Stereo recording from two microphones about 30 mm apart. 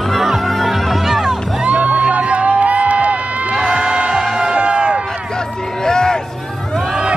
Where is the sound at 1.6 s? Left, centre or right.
Right.